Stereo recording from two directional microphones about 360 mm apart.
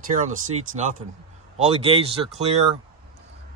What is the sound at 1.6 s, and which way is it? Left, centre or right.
Speech, centre.